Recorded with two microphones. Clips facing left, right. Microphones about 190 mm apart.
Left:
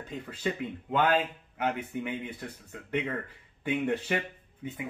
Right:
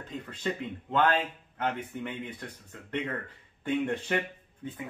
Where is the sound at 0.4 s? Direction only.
5° left (ahead or behind).